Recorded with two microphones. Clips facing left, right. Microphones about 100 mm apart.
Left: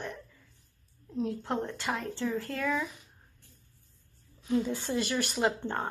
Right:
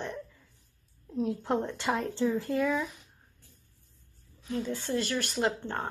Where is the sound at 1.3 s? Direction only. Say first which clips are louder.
Right 6 dB; 15° right (ahead or behind).